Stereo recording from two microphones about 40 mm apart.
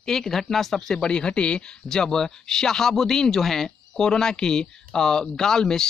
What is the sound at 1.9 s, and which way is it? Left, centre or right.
Speech, centre.